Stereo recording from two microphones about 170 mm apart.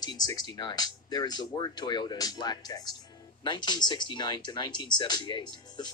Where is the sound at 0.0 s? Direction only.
25° left (ahead or behind).